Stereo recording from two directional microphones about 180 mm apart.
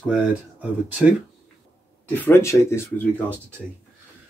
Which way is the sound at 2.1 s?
10° left (ahead or behind).